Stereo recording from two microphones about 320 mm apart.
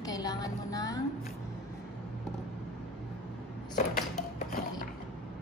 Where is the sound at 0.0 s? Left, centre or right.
Centre.